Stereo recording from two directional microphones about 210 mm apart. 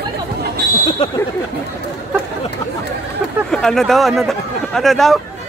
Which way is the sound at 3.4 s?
5° left (ahead or behind).